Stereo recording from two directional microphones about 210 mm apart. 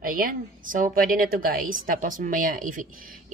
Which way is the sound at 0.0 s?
40° right (ahead or behind).